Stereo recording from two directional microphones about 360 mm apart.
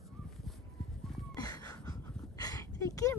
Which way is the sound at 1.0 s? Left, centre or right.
Centre.